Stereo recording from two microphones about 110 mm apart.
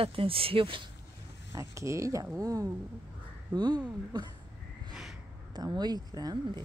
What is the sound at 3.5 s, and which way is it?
Speech, 40° right (ahead or behind).